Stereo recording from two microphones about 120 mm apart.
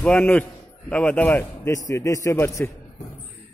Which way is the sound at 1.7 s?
25° left (ahead or behind).